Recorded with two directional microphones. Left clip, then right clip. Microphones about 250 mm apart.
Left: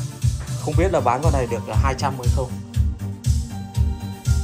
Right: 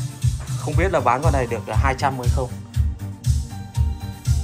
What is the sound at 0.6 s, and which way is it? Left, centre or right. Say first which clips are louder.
Speech: even; centre.